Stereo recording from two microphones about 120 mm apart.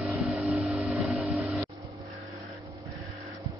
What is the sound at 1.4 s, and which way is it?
Music, 10° right (ahead or behind).